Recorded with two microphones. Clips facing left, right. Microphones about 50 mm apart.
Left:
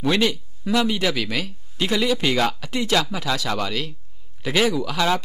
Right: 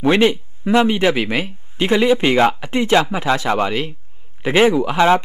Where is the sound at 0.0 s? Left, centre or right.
Right.